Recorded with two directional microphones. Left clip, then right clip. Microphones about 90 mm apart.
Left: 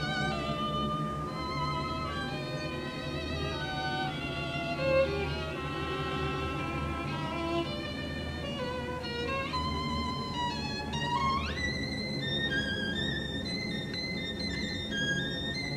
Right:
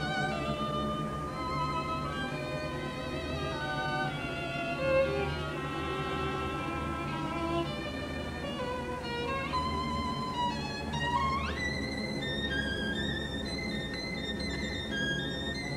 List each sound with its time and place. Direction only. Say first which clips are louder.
4.8 s music: left 1 dB; 55° left (ahead or behind)